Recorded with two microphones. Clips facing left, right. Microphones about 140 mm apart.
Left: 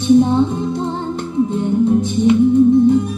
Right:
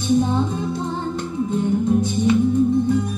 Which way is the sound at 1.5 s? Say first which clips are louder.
Left 2 dB; 20° left (ahead or behind).